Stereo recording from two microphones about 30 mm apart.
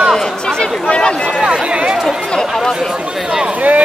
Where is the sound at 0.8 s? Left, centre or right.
Left.